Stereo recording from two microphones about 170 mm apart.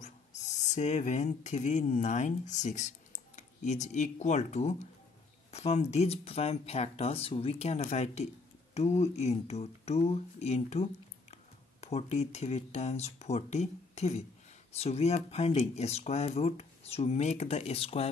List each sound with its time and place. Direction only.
0.0 s speech: 45° left (ahead or behind)